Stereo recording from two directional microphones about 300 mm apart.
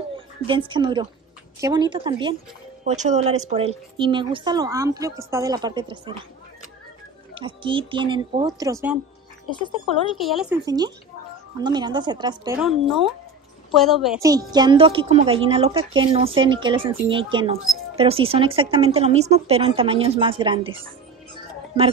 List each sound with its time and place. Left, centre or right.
0.5 s speech: centre
7.3 s speech: centre
9.5 s speech: centre
10.2 s speech: centre
13.7 s a woman's voice: centre
14.2 s speech: centre